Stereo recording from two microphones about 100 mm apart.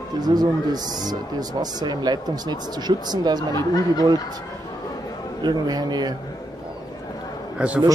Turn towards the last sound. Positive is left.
turn(degrees=-15)  # may be behind; listen again after turning